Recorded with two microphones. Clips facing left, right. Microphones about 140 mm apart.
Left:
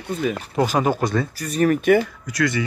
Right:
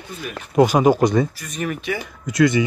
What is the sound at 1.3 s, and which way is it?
Speech, 40° left (ahead or behind).